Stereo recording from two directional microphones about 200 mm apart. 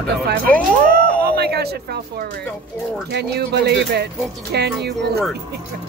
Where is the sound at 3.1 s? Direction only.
55° right (ahead or behind).